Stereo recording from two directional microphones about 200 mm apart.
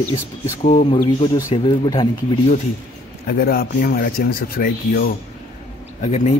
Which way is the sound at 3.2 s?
50° left (ahead or behind).